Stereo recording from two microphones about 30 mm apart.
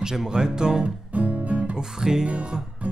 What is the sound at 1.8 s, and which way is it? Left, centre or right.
Speech, centre.